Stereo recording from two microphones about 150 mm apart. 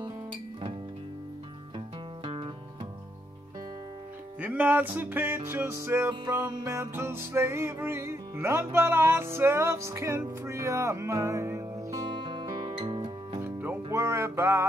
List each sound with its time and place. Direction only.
0.0 s music: 35° right (ahead or behind)
2.2 s music: 35° right (ahead or behind)
4.4 s music: 10° right (ahead or behind)
12.2 s music: 30° right (ahead or behind)
13.4 s music: 10° right (ahead or behind)